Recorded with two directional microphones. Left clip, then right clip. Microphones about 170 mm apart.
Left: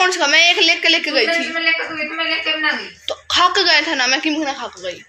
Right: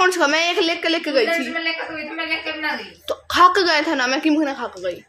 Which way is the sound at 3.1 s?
55° right (ahead or behind).